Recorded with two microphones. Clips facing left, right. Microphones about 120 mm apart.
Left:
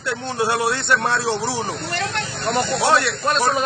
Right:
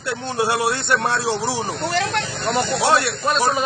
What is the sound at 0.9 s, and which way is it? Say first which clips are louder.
Speech: left 1 dB; 30° right (ahead or behind).